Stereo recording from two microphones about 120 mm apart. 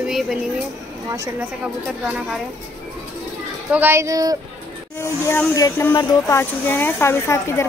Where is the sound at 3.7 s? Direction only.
20° right (ahead or behind).